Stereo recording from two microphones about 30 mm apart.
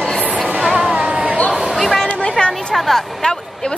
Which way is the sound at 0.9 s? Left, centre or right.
Right.